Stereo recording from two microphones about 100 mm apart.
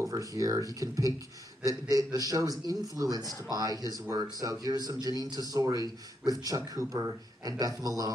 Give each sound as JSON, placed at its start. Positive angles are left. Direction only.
{"t": 0.0, "sound": "a man's voice", "side_deg": -35}